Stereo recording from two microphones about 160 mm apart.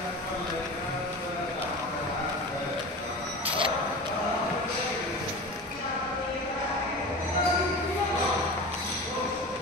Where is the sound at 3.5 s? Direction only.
30° right (ahead or behind).